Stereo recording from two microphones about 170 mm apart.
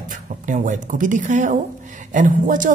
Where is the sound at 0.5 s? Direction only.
50° right (ahead or behind).